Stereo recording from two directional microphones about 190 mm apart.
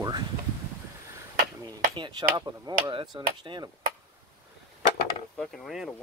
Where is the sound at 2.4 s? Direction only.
20° right (ahead or behind).